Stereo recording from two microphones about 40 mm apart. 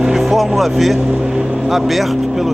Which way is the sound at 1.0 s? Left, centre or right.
Centre.